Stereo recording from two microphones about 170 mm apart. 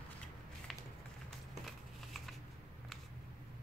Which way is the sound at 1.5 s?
Centre (ahead or behind).